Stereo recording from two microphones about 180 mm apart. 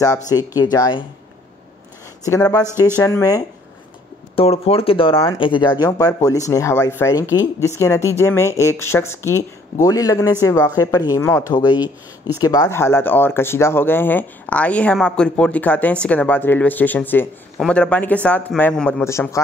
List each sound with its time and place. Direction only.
0.0 s speech: 20° left (ahead or behind)
2.2 s speech: 20° left (ahead or behind)
4.4 s speech: 30° left (ahead or behind); by 19.4 s 15° left (ahead or behind)